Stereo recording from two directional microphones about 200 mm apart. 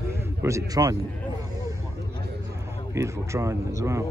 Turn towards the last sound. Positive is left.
turn(degrees=-15)  # may be behind; listen again after turning